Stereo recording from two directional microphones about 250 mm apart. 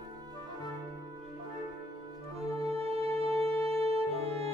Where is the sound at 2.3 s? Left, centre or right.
Right.